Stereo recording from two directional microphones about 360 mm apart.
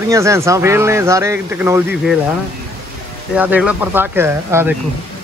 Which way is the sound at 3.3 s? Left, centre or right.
Centre.